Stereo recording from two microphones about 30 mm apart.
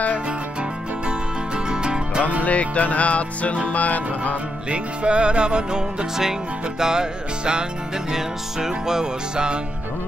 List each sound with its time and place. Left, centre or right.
1.7 s music: right
2.4 s music: left
3.6 s music: left
4.6 s music: right; by 9.1 s centre